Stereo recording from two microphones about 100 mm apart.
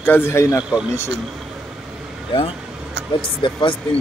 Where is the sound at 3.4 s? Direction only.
55° left (ahead or behind).